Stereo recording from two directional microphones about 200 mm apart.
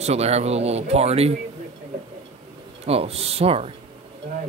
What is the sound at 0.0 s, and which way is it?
Speech, 30° right (ahead or behind).